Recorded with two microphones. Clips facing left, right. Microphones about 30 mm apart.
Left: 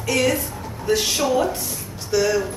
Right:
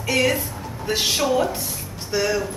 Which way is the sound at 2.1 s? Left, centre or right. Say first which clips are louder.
Left 3 dB; right.